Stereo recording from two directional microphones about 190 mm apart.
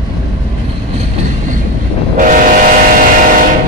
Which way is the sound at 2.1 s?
45° right (ahead or behind).